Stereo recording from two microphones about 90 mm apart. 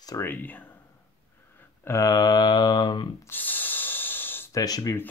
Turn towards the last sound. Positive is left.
turn(degrees=40)  # may be behind; listen again after turning